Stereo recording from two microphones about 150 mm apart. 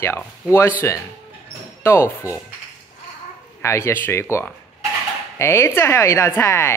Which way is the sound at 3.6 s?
20° left (ahead or behind).